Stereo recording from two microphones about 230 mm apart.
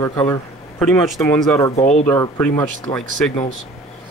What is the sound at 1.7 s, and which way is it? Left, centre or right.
Speech, left.